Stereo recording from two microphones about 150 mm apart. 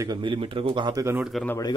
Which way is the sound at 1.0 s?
10° right (ahead or behind).